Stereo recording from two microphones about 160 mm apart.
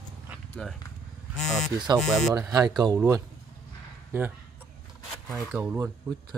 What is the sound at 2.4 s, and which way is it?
Music, 20° right (ahead or behind).